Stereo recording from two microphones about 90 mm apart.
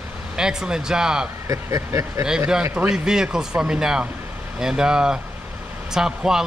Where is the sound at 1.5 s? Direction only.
35° right (ahead or behind).